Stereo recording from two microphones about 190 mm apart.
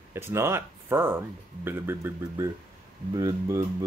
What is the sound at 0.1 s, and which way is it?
Speech, 15° right (ahead or behind).